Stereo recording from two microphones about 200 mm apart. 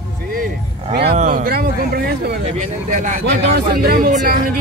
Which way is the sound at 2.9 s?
40° right (ahead or behind).